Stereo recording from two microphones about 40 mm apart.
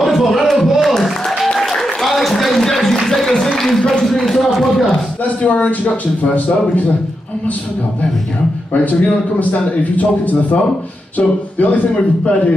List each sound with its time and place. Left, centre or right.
0.0 s music: centre
1.6 s applause: centre
3.5 s a sound: centre
4.0 s speech: centre
4.6 s a sound: centre
5.2 s a man's voice: left
8.8 s a man's voice: left